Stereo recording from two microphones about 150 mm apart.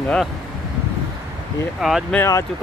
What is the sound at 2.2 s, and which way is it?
Speech, 20° left (ahead or behind).